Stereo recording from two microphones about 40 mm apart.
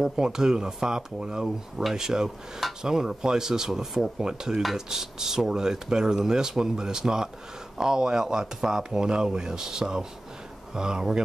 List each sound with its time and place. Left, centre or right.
0.0 s speech: centre
4.2 s speech: centre